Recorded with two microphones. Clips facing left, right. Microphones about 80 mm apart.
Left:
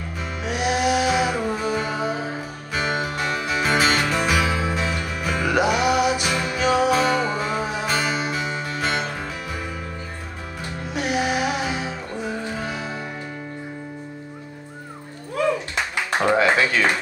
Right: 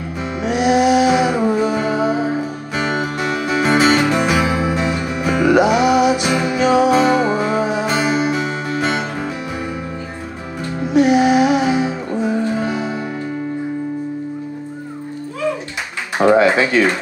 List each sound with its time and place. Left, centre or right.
0.4 s music: centre
10.8 s music: centre
12.1 s music: centre
12.5 s music: centre
16.3 s a sound: centre